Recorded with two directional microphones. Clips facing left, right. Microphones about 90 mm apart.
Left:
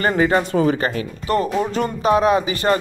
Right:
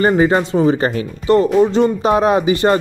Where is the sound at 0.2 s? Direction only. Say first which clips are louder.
Right 3 dB; 30° right (ahead or behind).